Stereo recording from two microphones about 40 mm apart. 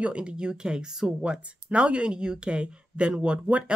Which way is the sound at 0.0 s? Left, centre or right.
Right.